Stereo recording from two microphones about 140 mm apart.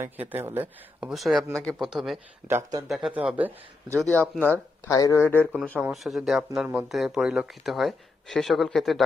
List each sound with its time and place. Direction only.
0.0 s speech: 15° right (ahead or behind)
1.0 s speech: centre (ahead or behind)
2.4 s speech: 20° right (ahead or behind)
2.9 s speech: 5° right (ahead or behind)
4.8 s speech: 25° left (ahead or behind)
5.8 s speech: centre (ahead or behind)